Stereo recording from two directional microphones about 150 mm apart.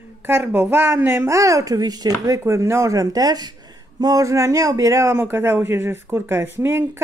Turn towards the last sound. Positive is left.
turn(degrees=-15)  # may be behind; listen again after turning